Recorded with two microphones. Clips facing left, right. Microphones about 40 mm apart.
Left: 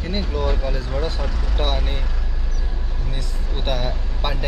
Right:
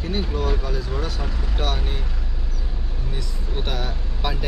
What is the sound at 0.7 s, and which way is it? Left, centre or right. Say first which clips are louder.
Speech: left 2 dB; left.